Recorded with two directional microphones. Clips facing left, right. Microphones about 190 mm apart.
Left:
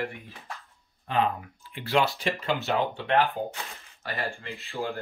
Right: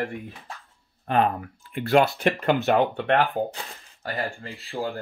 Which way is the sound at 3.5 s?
35° right (ahead or behind).